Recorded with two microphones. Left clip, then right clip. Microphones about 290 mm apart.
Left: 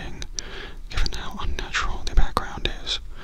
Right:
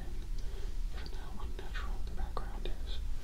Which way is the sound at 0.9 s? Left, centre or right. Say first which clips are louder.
Left 19 dB; left.